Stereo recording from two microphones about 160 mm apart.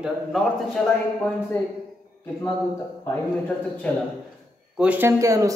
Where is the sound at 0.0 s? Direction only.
Centre (ahead or behind).